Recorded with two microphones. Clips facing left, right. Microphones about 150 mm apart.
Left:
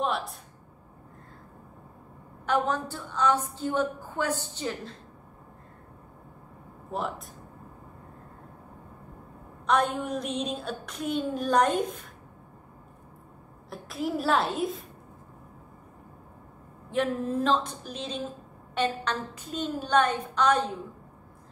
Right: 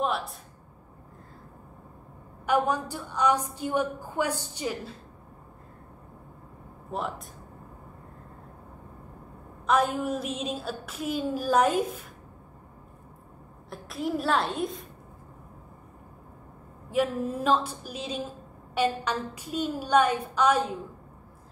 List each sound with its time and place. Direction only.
0.0 s a sound: centre (ahead or behind)
2.4 s a woman's voice: 10° right (ahead or behind)
6.9 s a woman's voice: centre (ahead or behind)
9.7 s a woman's voice: 5° right (ahead or behind)
13.7 s a woman's voice: centre (ahead or behind)
16.9 s a woman's voice: 10° right (ahead or behind)